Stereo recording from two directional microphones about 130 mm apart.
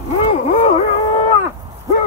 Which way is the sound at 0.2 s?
60° left (ahead or behind).